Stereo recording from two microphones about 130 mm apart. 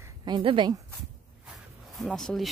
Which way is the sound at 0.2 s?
40° right (ahead or behind).